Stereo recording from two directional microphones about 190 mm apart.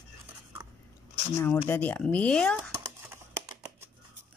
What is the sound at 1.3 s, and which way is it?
Speech, 15° left (ahead or behind).